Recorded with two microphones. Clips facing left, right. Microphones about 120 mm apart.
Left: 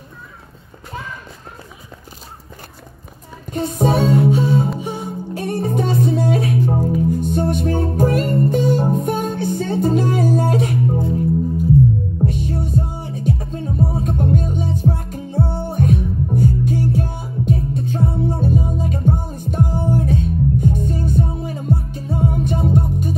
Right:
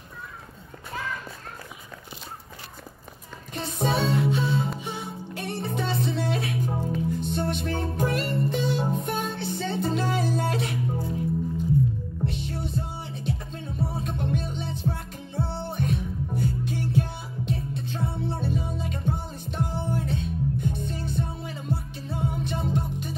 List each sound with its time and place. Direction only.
3.5 s music: 50° left (ahead or behind)
12.3 s music: 50° left (ahead or behind)